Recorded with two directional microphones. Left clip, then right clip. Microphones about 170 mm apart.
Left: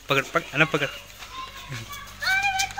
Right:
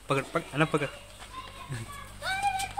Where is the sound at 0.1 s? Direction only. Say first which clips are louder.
Left 6 dB; 5° left (ahead or behind).